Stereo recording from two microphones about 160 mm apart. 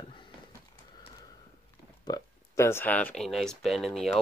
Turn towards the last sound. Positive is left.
turn(degrees=5)  # may be behind; listen again after turning